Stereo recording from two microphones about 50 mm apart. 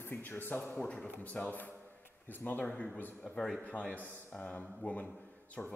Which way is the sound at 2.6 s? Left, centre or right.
Centre.